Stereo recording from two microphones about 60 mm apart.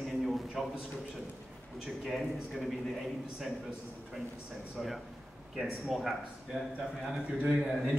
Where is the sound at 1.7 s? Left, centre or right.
Centre.